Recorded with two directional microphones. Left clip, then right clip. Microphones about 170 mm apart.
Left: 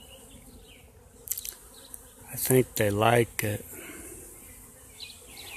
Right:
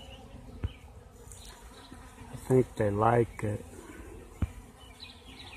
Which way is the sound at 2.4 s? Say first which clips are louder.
Left 2 dB; 30° left (ahead or behind).